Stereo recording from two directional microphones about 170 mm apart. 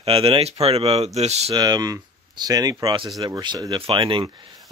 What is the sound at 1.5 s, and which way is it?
Speech, 20° right (ahead or behind).